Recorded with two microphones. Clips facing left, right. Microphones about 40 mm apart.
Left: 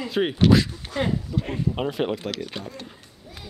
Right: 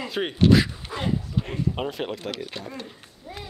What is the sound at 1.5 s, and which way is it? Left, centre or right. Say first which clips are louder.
Speech: left 2 dB; centre.